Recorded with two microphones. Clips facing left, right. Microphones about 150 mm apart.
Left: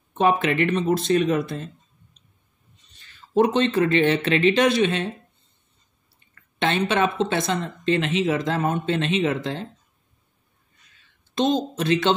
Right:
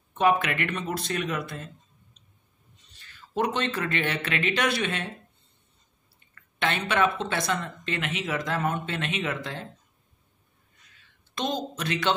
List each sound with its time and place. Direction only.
0.1 s speech: 25° left (ahead or behind)
3.1 s speech: 25° left (ahead or behind)
6.3 s speech: 25° left (ahead or behind)
11.3 s speech: 25° left (ahead or behind)